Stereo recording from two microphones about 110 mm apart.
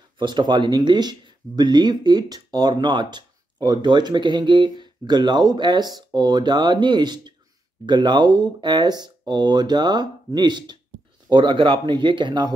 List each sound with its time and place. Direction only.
0.2 s speech: 45° right (ahead or behind)